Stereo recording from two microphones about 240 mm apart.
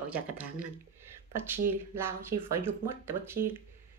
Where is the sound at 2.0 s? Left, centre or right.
Centre.